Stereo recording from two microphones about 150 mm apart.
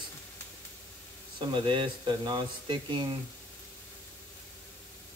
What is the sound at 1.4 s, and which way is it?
Speech, 35° right (ahead or behind).